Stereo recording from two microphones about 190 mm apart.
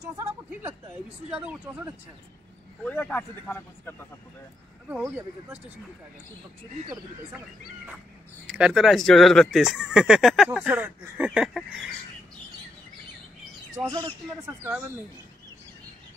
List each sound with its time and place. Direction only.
0.0 s a sound: 15° right (ahead or behind)
1.3 s speech: 5° right (ahead or behind)
2.8 s a man's voice: 5° left (ahead or behind)
4.8 s speech: 5° right (ahead or behind)
8.5 s speech: 5° right (ahead or behind)
13.8 s speech: 20° right (ahead or behind)